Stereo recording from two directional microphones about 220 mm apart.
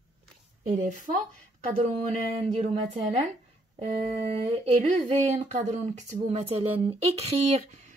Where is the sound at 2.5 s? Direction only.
30° right (ahead or behind).